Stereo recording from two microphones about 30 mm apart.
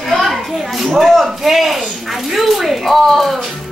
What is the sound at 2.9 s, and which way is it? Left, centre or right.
Speech, centre.